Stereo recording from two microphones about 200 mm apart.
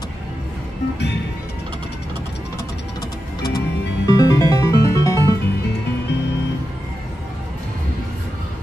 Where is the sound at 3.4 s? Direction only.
20° left (ahead or behind).